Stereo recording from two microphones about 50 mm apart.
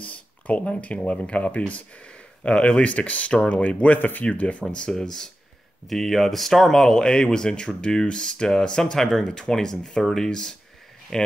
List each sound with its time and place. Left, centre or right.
0.0 s speech: left
4.6 s speech: centre